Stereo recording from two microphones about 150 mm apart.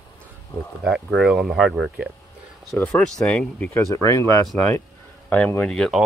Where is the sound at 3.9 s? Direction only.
20° left (ahead or behind).